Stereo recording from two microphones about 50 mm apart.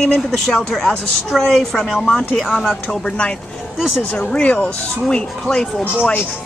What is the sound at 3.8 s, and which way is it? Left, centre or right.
Speech, centre.